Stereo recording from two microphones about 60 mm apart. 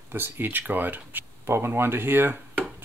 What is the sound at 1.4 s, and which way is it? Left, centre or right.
Speech, right.